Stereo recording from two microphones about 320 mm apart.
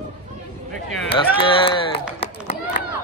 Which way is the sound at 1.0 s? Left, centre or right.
Centre.